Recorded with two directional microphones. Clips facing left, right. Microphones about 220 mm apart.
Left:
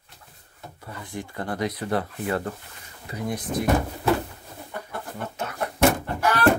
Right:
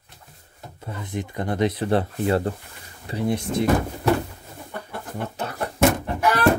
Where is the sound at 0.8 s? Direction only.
20° right (ahead or behind).